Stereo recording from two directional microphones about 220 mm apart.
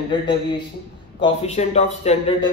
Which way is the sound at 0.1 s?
20° left (ahead or behind).